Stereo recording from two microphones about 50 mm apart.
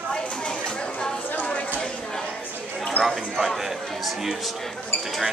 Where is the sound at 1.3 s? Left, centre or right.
Left.